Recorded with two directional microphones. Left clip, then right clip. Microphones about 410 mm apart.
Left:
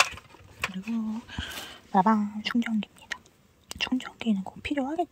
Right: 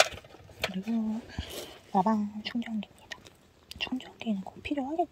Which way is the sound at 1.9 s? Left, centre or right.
Left.